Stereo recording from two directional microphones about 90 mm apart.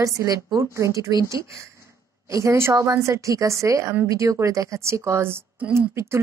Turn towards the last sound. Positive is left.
turn(degrees=-30)  # may be behind; listen again after turning